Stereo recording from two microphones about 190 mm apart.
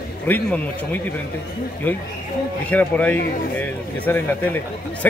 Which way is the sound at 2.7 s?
10° left (ahead or behind).